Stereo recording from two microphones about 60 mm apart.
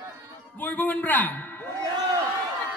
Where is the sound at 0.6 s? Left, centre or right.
Left.